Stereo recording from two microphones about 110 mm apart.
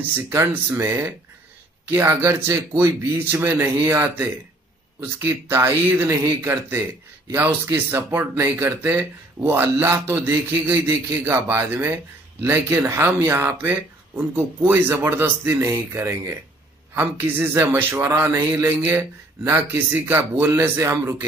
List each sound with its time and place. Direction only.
0.0 s speech: 20° right (ahead or behind)
2.0 s speech: 20° right (ahead or behind)